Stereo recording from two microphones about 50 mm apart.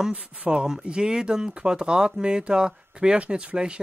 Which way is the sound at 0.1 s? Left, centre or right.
Right.